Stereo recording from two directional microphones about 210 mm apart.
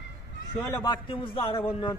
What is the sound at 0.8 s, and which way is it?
A man's voice, 25° left (ahead or behind).